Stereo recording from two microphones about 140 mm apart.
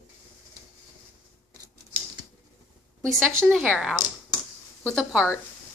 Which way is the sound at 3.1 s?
5° left (ahead or behind).